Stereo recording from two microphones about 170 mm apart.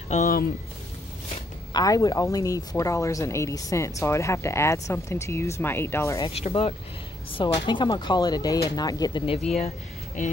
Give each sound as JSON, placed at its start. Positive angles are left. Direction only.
{"t": 1.7, "sound": "speech", "side_deg": 20}
{"t": 6.2, "sound": "speech", "side_deg": 35}